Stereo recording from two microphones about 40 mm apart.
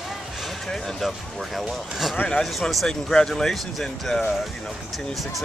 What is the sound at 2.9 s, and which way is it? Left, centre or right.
Speech, centre.